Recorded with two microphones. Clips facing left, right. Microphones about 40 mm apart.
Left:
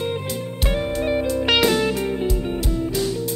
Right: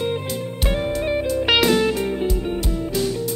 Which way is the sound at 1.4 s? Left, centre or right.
Centre.